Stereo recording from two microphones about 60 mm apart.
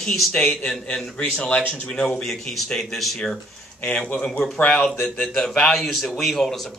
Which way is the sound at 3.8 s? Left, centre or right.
Centre.